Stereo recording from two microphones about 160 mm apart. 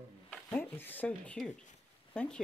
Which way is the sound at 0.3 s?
10° left (ahead or behind).